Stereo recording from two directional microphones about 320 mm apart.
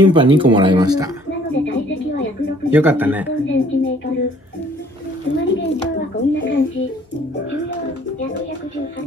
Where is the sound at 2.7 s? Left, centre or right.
Centre.